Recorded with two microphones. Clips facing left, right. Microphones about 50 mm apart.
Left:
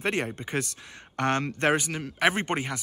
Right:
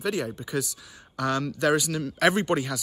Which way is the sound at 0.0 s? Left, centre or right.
Left.